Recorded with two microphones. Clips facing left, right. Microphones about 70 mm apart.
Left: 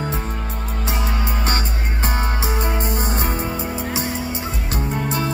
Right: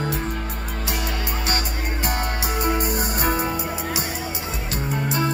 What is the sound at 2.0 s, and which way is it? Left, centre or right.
Music, left.